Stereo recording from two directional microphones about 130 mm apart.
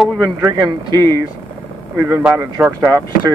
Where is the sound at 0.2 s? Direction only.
20° right (ahead or behind).